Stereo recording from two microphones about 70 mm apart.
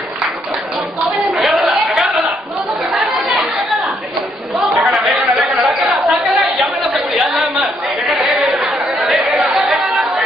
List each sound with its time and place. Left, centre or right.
1.4 s a sound: centre
4.8 s chatter: centre
6.0 s chatter: centre